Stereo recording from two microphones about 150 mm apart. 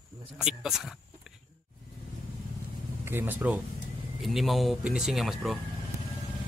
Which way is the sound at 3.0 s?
15° right (ahead or behind).